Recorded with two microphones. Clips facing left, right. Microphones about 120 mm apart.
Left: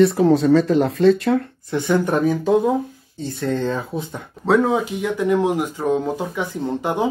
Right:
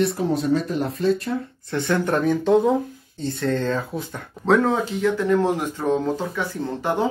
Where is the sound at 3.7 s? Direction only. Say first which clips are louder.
Left 1 dB; 25° left (ahead or behind).